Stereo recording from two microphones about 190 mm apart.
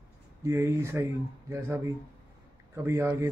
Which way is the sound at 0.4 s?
15° right (ahead or behind).